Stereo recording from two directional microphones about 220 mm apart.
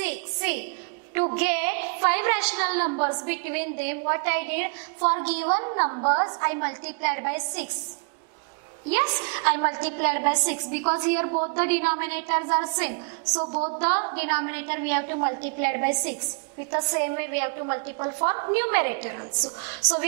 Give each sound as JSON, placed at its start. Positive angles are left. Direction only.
{"t": 1.3, "sound": "a woman's voice", "side_deg": -10}
{"t": 2.8, "sound": "a woman's voice", "side_deg": -25}
{"t": 3.3, "sound": "a woman's voice", "side_deg": -10}
{"t": 5.5, "sound": "a woman's voice", "side_deg": -25}
{"t": 8.9, "sound": "a woman's voice", "side_deg": -20}
{"t": 13.7, "sound": "a woman's voice", "side_deg": -10}